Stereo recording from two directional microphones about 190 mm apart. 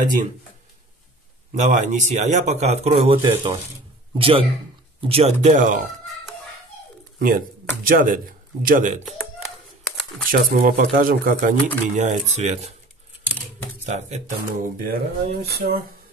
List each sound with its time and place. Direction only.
1.5 s speech: 40° right (ahead or behind)
3.2 s speech: 20° right (ahead or behind); by 5.8 s 40° right (ahead or behind)
7.2 s speech: 45° right (ahead or behind)
10.3 s speech: 45° right (ahead or behind)
13.8 s speech: 40° right (ahead or behind); by 15.8 s 55° right (ahead or behind)